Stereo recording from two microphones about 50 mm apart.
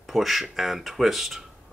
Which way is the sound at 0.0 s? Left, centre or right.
Centre.